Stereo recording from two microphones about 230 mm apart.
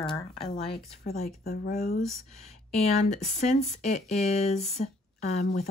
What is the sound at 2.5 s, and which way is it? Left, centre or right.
Speech, left.